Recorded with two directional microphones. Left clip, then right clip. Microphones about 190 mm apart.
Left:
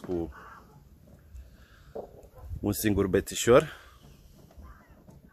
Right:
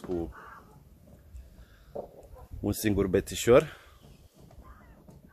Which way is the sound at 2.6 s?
15° left (ahead or behind).